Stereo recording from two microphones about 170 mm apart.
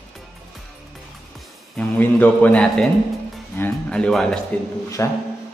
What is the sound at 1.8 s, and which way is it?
A man's voice, 10° left (ahead or behind).